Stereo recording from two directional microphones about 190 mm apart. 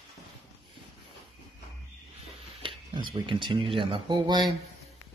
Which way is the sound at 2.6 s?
25° right (ahead or behind).